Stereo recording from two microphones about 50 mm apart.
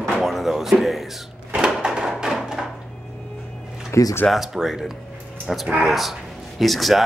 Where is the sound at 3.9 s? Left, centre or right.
Left.